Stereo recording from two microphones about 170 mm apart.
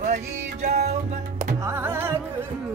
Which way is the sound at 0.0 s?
45° right (ahead or behind).